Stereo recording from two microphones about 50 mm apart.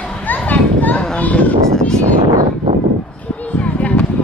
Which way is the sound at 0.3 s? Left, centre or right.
Left.